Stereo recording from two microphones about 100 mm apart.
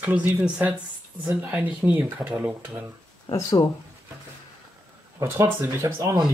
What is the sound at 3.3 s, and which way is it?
Speech, 40° left (ahead or behind).